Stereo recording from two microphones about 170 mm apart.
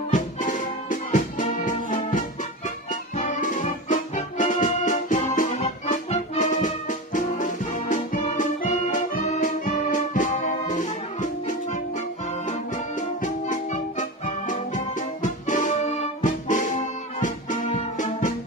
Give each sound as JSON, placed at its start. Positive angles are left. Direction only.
{"t": 0.1, "sound": "music", "side_deg": 50}
{"t": 13.2, "sound": "music", "side_deg": 45}